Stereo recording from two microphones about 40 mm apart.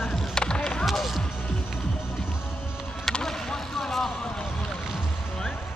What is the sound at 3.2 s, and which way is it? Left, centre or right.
Vehicle, centre.